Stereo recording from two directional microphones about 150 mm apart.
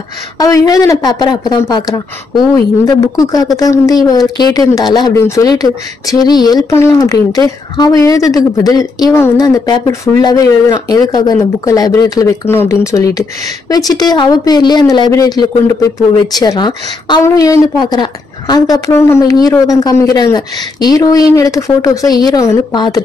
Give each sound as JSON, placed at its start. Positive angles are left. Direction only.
{"t": 0.4, "sound": "a woman's voice", "side_deg": 25}